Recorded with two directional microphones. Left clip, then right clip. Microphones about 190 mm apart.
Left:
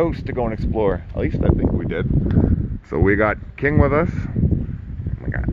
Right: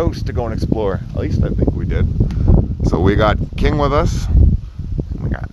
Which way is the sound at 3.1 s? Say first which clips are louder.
Right 2 dB; 25° right (ahead or behind).